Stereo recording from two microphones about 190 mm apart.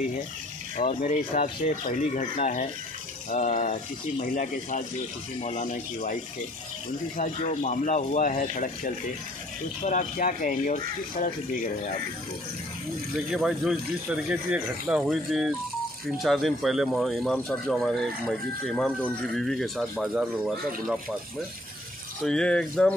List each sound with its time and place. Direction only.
0.7 s speech: 40° left (ahead or behind)
7.2 s speech: 45° left (ahead or behind)
13.3 s speech: centre (ahead or behind)
22.2 s speech: 5° left (ahead or behind)